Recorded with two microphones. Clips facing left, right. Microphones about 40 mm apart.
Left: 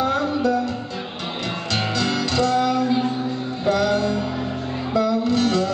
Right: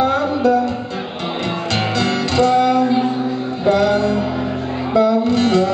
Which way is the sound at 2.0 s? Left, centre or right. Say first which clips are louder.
Right 5 dB; right.